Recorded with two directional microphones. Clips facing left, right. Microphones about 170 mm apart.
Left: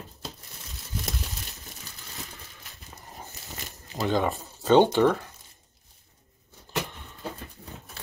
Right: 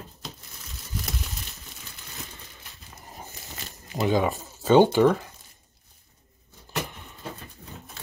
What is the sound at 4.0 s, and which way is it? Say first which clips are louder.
Speech: right 2 dB; centre (ahead or behind).